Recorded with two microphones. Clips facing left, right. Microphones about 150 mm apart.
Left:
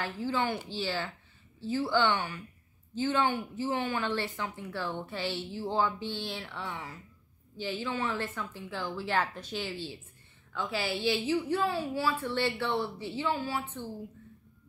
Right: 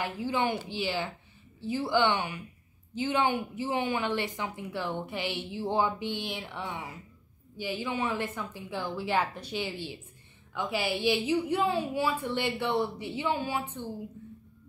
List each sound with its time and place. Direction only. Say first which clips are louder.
0.0 s a woman's voice: right 2 dB; 15° right (ahead or behind)